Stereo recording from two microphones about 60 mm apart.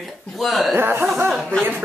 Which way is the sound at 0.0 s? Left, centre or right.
Centre.